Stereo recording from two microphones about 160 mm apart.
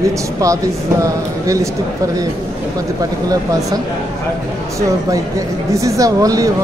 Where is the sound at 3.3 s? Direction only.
25° right (ahead or behind).